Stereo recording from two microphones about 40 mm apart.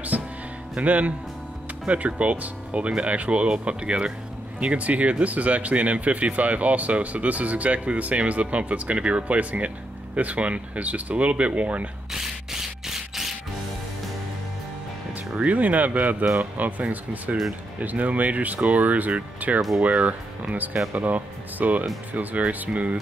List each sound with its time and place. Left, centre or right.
0.1 s music: right
0.8 s speech: right
12.1 s a sound: centre
15.3 s speech: right